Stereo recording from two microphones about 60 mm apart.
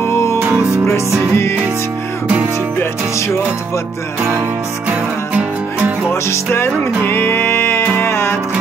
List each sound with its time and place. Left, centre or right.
0.0 s music: left
6.2 s music: left